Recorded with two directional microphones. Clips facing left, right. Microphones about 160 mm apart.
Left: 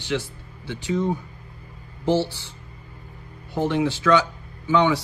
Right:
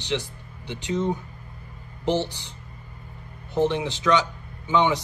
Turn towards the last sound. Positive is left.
turn(degrees=-20)  # may be behind; listen again after turning